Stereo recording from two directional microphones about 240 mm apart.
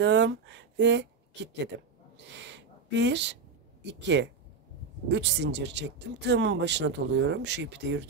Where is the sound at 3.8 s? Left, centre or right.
Right.